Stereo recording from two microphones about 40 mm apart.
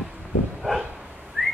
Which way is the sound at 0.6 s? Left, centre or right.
Centre.